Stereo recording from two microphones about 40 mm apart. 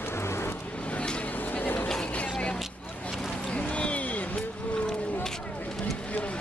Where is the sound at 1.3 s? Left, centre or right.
Left.